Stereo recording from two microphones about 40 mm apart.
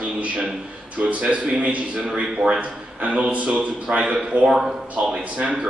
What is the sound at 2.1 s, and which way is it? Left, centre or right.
A man's voice, centre.